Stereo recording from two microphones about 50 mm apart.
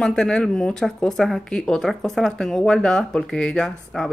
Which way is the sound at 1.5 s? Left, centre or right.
Centre.